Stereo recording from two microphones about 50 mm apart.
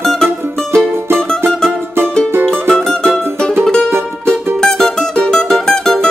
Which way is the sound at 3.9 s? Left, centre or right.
Right.